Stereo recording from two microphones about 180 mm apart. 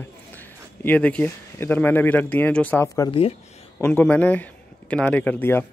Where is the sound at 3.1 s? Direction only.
30° left (ahead or behind).